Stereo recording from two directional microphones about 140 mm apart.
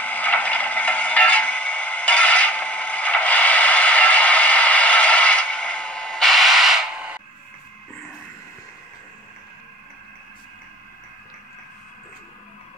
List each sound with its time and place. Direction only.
0.0 s scrape: 10° left (ahead or behind); by 7.2 s 5° right (ahead or behind)